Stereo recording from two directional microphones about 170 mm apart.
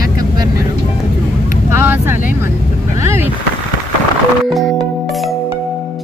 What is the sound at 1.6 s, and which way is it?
Vehicle, 15° right (ahead or behind).